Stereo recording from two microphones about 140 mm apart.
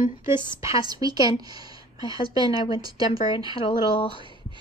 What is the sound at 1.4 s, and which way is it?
Speech, 25° right (ahead or behind).